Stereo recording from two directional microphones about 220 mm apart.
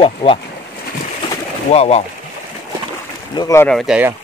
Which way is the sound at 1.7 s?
30° left (ahead or behind).